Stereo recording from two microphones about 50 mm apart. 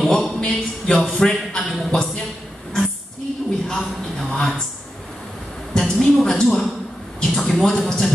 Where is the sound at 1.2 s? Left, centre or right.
Centre.